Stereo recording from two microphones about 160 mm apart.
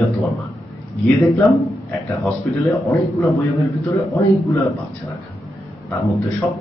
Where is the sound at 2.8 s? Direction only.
20° left (ahead or behind).